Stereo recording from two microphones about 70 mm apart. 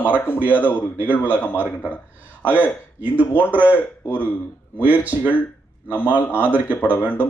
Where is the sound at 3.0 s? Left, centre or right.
Right.